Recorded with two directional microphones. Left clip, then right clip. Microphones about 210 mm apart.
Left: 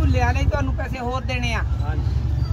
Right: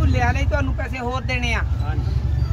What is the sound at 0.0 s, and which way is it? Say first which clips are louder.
Speech: right 1 dB; 20° right (ahead or behind).